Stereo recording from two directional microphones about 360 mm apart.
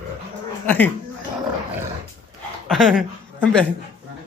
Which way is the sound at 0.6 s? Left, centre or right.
Centre.